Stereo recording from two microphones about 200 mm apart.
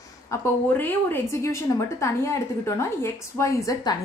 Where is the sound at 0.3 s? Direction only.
10° left (ahead or behind).